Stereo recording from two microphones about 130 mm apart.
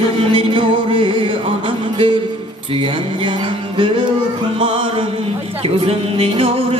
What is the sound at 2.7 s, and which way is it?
Music, 40° right (ahead or behind).